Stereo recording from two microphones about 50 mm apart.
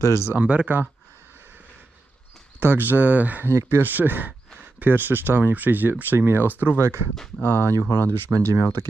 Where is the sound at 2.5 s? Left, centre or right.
Right.